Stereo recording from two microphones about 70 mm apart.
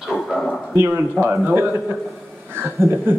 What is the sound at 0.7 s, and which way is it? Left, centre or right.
Speech, right.